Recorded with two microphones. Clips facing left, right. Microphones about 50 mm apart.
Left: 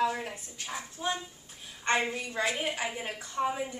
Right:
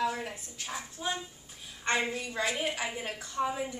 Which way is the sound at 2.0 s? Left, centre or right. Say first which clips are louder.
Left 1 dB; centre.